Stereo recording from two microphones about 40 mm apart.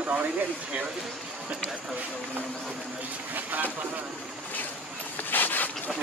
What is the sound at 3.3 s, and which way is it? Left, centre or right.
Speech, right.